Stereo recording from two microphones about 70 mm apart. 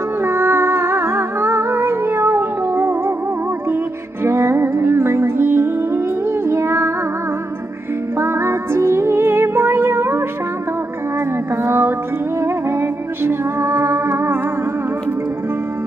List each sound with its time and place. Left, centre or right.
0.2 s music: right
4.2 s music: right
8.2 s music: right
11.6 s music: right
13.2 s music: right